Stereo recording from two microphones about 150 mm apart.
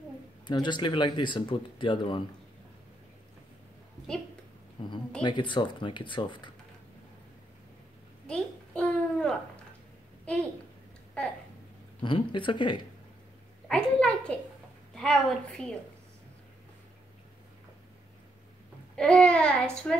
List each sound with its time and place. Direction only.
0.5 s speech: 30° left (ahead or behind)
4.8 s speech: 30° left (ahead or behind)
8.3 s babbling: 5° left (ahead or behind)
12.0 s speech: 30° left (ahead or behind)
13.7 s a sound: 5° left (ahead or behind)
15.0 s a woman's voice: 5° left (ahead or behind)
18.9 s a child's voice: 5° left (ahead or behind)